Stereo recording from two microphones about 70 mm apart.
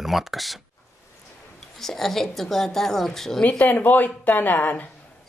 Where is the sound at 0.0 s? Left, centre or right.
Centre.